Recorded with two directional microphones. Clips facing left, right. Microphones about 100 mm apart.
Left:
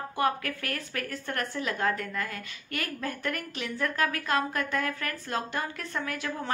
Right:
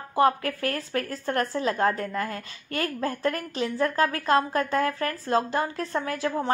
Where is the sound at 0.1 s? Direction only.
30° right (ahead or behind).